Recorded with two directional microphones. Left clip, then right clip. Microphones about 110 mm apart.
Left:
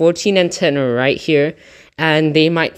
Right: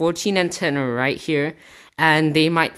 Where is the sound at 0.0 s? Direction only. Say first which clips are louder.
Left 7 dB; 20° left (ahead or behind).